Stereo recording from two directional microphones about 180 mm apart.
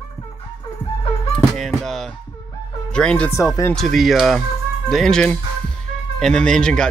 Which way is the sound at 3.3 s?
20° left (ahead or behind).